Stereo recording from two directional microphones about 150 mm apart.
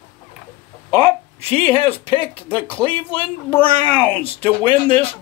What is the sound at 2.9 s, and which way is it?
Speech, 15° left (ahead or behind).